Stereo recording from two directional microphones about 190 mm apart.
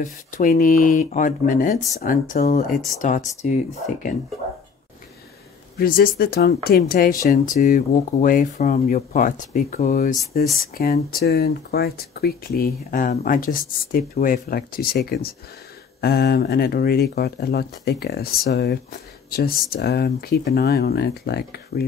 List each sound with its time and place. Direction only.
0.0 s speech: 45° left (ahead or behind)
5.8 s speech: 50° left (ahead or behind)